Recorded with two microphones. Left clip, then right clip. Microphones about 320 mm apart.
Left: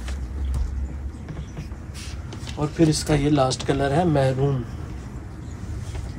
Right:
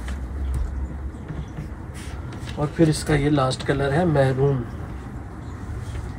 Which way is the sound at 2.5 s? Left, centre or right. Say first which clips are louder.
Even; centre.